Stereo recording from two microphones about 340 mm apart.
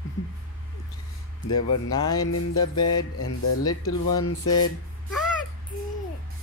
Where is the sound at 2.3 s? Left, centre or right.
Left.